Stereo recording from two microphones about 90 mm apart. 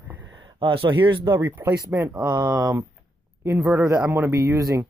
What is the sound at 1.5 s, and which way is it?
Speech, 25° right (ahead or behind).